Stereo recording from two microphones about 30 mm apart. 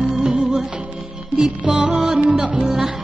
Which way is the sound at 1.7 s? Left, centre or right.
Right.